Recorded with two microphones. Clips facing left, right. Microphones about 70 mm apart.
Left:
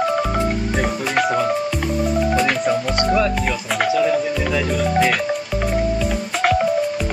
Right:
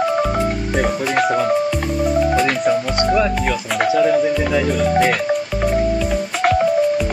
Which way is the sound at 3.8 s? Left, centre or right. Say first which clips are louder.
Right 3 dB; right.